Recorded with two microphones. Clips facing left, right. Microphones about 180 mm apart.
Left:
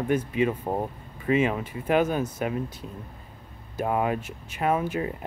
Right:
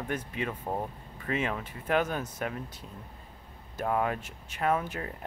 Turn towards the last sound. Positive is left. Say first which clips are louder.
# left 7 dB
turn(degrees=5)  # may be behind; listen again after turning